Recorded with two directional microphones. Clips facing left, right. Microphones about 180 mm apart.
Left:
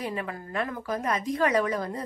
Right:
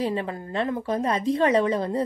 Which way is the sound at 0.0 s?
30° right (ahead or behind).